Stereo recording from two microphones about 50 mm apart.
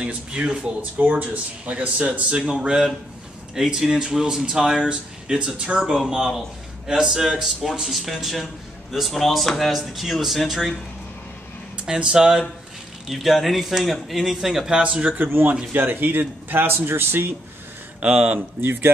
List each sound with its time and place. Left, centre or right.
0.0 s speech: right; by 10.7 s centre
11.7 s speech: centre
14.8 s speech: right
15.7 s a man's voice: right
18.0 s speech: right
18.6 s a man's voice: right